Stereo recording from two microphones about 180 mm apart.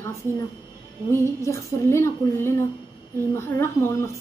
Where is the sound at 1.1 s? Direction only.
15° left (ahead or behind).